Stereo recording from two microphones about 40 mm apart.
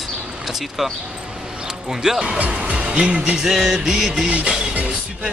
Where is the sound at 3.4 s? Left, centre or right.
Centre.